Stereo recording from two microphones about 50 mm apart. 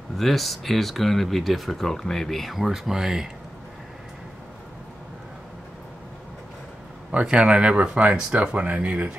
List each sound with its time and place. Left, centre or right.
0.2 s speech: centre
7.1 s speech: right